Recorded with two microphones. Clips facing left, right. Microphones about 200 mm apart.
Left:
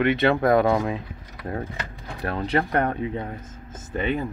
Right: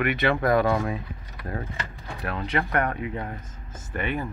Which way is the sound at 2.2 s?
30° left (ahead or behind).